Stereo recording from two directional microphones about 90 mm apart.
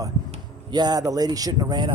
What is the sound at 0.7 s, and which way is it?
Speech, 50° right (ahead or behind).